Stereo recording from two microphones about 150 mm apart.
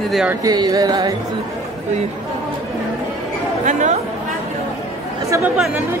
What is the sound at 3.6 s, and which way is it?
Speech, 55° right (ahead or behind).